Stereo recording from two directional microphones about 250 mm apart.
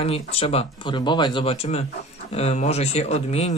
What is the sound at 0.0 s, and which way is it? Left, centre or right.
Speech, left.